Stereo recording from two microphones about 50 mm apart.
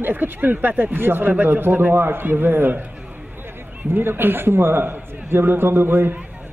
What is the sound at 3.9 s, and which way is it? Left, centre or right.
A man's voice, right.